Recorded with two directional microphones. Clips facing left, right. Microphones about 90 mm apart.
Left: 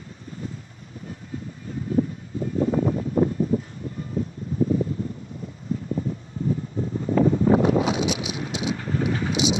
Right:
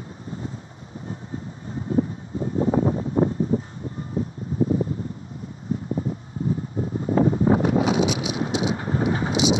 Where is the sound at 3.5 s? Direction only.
35° right (ahead or behind).